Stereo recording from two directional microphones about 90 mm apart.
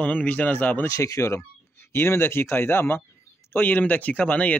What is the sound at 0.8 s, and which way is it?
Speech, 35° left (ahead or behind).